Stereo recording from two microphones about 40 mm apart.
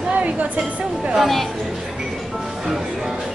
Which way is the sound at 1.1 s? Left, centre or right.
Centre.